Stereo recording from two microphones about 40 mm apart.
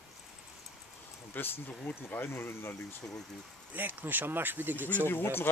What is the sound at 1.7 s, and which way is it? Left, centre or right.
Speech, left.